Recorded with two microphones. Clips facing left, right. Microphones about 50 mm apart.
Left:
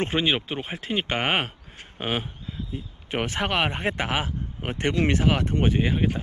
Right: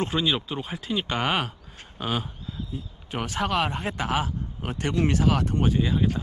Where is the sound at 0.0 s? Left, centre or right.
Left.